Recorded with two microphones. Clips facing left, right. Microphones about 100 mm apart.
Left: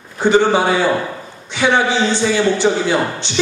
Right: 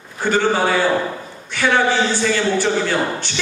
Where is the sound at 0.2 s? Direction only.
20° left (ahead or behind).